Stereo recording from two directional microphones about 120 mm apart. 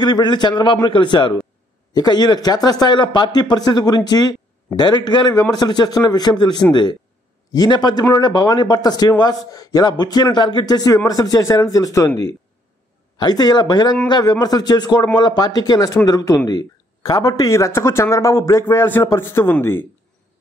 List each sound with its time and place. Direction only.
0.0 s a man's voice: 40° left (ahead or behind)
13.2 s a man's voice: 35° left (ahead or behind)